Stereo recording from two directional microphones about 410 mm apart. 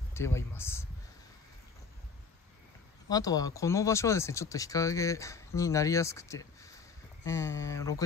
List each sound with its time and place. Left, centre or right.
0.1 s speech: centre
3.1 s speech: centre